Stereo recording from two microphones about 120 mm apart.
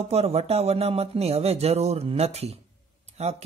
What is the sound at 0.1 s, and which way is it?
Speech, 60° right (ahead or behind).